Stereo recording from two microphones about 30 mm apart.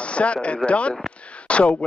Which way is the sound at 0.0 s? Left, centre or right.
Left.